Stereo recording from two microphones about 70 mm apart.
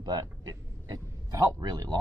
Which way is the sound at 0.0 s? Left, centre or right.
Right.